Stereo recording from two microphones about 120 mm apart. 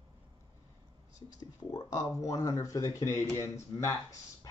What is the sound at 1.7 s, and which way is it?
Speech, 30° left (ahead or behind).